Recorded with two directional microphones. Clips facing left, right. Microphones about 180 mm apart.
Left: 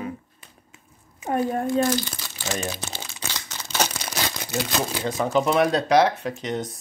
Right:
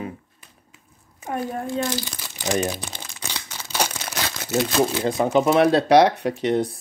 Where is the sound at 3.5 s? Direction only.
10° right (ahead or behind).